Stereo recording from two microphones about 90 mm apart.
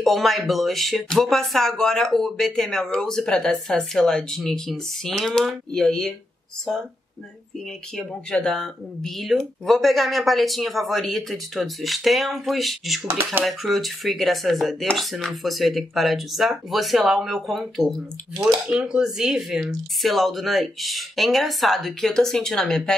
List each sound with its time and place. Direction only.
0.0 s speech: centre (ahead or behind)
7.9 s speech: 10° left (ahead or behind)
13.0 s speech: 25° right (ahead or behind)
13.5 s speech: centre (ahead or behind)